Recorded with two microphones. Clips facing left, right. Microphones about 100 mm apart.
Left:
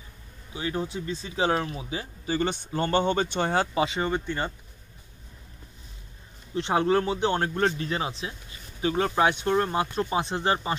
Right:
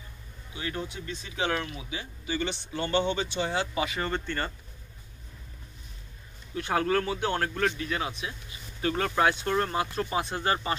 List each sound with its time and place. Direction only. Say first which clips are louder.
0.6 s speech: left 5 dB; 30° left (ahead or behind); by 3.6 s 50° left (ahead or behind)
3.7 s speech: left 4 dB; 25° left (ahead or behind)
4.1 s speech: left 3 dB; 15° left (ahead or behind)
6.5 s speech: left 3 dB; 25° left (ahead or behind)
8.8 s speech: left 2 dB; 15° left (ahead or behind)